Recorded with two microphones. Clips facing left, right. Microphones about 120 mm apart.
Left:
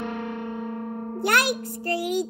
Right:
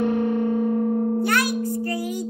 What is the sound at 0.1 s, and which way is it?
Music, 35° right (ahead or behind).